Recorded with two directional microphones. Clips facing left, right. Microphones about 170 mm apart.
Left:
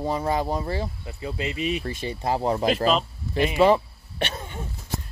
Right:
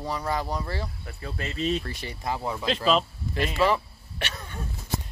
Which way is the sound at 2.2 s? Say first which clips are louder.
Left 7 dB; 35° left (ahead or behind).